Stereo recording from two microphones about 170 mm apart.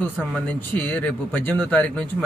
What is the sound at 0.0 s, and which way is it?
A man's voice, 10° left (ahead or behind).